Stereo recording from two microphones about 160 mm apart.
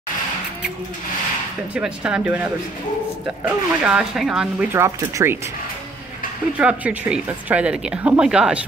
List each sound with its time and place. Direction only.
1.7 s speech: 5° right (ahead or behind)
4.7 s speech: 15° right (ahead or behind)
6.6 s speech: 10° right (ahead or behind)